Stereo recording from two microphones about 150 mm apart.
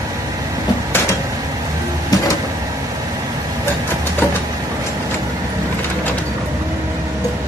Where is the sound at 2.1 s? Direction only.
25° left (ahead or behind).